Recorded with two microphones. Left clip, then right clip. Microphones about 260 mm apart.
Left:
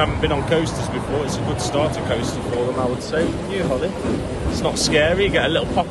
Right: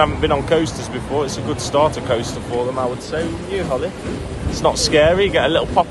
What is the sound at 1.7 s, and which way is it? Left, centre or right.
Speech, right.